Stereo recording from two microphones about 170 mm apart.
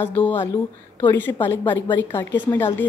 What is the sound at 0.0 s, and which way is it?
A woman's voice, 10° left (ahead or behind).